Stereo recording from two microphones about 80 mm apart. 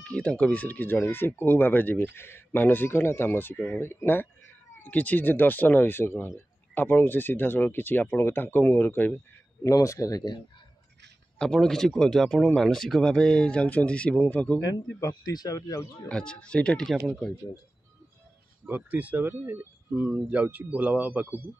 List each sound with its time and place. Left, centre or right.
0.0 s speech: centre
3.8 s speech: left
9.6 s speech: left
11.3 s speech: centre
15.0 s speech: left
15.3 s speech: left
16.1 s speech: centre
18.7 s a man's voice: right